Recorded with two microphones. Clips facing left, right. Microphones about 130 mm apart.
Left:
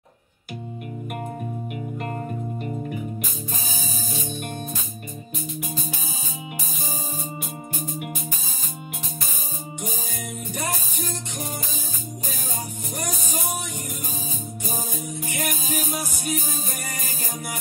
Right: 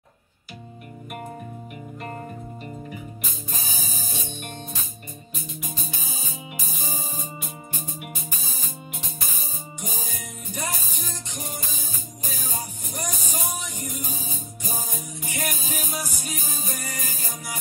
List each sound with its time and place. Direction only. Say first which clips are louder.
10.5 s music: left 1 dB; 55° left (ahead or behind)
12.9 s music: left 2 dB; 55° left (ahead or behind)
15.2 s music: left 1 dB; 60° left (ahead or behind)